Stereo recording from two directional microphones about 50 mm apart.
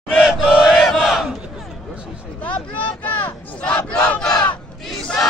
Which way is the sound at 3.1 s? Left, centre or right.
Left.